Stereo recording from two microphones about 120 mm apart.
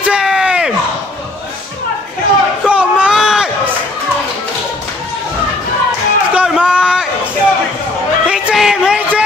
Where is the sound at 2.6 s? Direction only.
10° right (ahead or behind).